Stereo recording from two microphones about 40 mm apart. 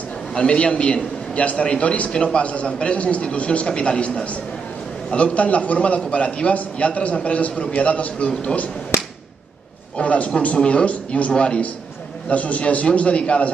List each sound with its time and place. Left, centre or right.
0.3 s a man's voice: left
9.9 s speech: left